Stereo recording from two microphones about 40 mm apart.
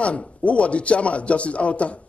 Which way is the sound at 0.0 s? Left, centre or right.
Left.